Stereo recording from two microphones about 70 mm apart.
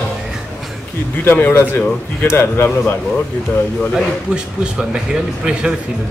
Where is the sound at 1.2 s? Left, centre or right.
Left.